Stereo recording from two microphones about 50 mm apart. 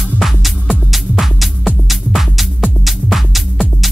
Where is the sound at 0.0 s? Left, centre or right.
Centre.